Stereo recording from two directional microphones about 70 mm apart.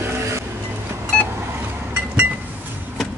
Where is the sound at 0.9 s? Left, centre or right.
Right.